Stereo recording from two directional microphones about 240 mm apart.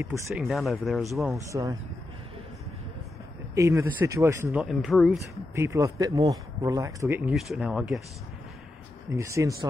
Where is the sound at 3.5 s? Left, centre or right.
Centre.